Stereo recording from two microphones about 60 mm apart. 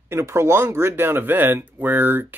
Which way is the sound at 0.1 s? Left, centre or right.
Right.